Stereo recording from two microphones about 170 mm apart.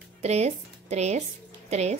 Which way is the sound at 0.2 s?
40° right (ahead or behind).